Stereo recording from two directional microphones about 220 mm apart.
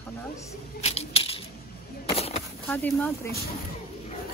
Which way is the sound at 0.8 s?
25° left (ahead or behind).